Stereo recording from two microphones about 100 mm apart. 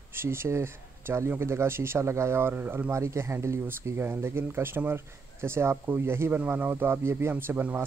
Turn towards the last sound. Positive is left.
turn(degrees=-20)  # may be behind; listen again after turning